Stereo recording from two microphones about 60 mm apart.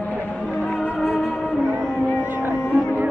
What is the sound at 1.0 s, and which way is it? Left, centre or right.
Music, centre.